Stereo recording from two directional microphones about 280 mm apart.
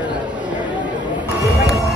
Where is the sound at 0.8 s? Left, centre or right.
Right.